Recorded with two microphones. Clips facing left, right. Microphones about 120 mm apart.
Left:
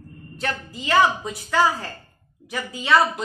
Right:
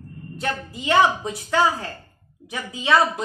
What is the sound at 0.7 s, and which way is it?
Speech, 20° right (ahead or behind).